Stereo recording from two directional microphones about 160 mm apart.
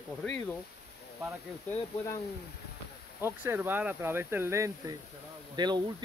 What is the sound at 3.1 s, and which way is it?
Speech, 15° right (ahead or behind).